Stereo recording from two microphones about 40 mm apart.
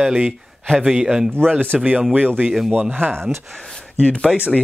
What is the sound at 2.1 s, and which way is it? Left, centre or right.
Speech, right.